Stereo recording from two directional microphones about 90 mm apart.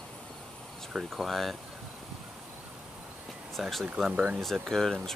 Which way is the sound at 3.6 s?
Centre (ahead or behind).